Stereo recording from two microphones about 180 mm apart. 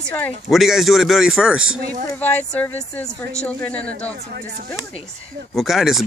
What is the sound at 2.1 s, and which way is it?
Speech, 10° left (ahead or behind).